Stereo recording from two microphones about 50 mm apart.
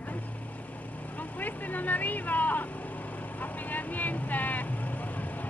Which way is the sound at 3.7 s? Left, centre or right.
Left.